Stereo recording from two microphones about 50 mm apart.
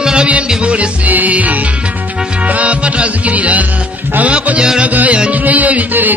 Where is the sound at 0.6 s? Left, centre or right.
Right.